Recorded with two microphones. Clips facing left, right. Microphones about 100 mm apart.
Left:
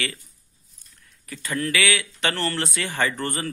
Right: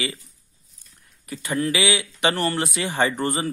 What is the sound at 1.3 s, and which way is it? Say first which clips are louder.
Speech: right 2 dB; 20° right (ahead or behind).